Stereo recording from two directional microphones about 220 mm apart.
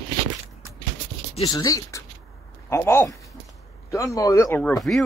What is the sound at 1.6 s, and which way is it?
Speech, 15° left (ahead or behind).